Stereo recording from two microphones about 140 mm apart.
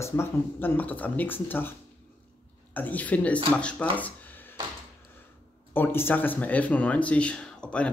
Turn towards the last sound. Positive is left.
turn(degrees=5)  # may be behind; listen again after turning